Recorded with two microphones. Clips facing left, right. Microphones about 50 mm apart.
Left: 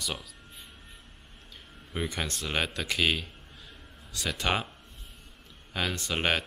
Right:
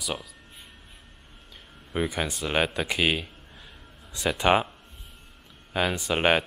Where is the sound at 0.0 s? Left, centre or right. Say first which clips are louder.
Right 3 dB; centre.